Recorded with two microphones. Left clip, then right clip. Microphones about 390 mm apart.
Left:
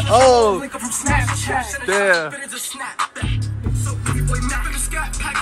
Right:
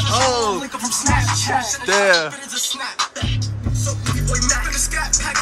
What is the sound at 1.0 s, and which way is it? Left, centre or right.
Music, right.